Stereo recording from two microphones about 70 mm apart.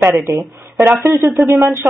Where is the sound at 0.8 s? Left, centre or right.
Right.